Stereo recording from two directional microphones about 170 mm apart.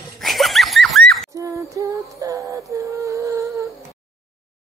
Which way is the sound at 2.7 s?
20° right (ahead or behind).